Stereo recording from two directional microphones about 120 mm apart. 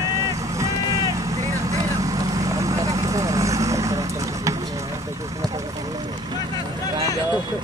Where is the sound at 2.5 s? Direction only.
25° right (ahead or behind).